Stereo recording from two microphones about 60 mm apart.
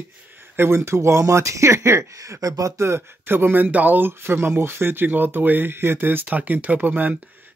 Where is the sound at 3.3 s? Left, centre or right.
Right.